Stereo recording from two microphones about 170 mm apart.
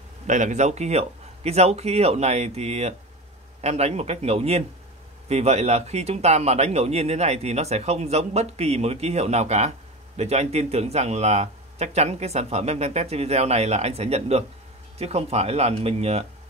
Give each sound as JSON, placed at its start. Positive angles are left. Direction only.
{"t": 0.3, "sound": "speech", "side_deg": -45}